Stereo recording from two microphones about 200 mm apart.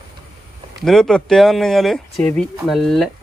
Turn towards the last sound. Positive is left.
turn(degrees=0)  # may be behind; listen again after turning